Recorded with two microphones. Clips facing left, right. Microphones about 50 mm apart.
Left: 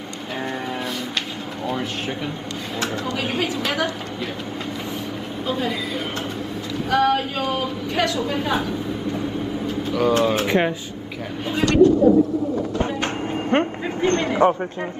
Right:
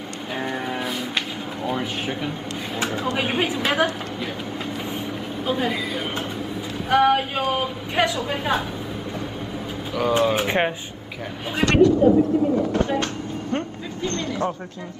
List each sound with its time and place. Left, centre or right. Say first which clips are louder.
1.7 s speech: even; centre
3.1 s speech: right 3 dB; right
5.5 s speech: right 1 dB; centre
9.9 s speech: left 1 dB; centre
13.0 s music: left 4 dB; left